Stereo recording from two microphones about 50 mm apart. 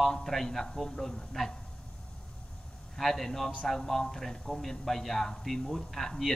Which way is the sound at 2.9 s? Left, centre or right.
Centre.